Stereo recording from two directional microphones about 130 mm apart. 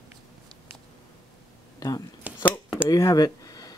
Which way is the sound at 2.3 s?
10° right (ahead or behind).